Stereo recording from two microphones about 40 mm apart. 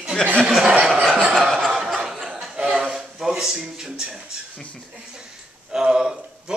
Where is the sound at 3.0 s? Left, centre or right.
Centre.